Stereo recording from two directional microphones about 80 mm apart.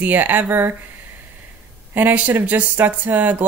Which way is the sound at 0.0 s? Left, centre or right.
Right.